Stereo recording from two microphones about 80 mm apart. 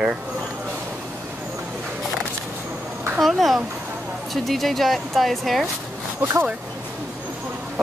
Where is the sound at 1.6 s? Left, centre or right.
Centre.